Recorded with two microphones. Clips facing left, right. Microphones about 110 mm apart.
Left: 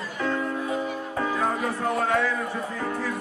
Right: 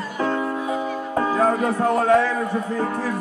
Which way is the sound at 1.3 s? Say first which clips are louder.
Right 7 dB; 40° right (ahead or behind).